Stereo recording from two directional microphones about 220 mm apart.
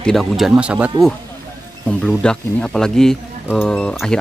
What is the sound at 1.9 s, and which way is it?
Speech, 5° left (ahead or behind).